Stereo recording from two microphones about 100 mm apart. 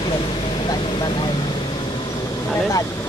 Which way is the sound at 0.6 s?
50° left (ahead or behind).